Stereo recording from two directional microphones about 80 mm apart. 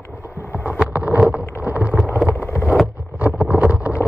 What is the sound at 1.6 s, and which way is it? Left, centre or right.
Boat, centre.